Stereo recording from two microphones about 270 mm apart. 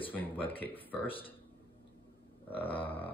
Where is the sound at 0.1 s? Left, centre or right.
Centre.